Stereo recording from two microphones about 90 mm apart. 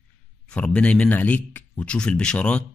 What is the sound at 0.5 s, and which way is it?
Speech, 15° left (ahead or behind).